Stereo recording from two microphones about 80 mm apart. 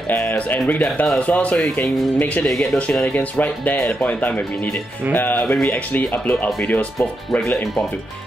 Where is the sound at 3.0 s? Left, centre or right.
Left.